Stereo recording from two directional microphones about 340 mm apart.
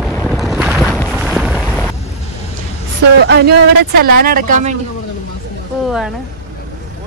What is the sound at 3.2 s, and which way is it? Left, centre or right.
Speech, right.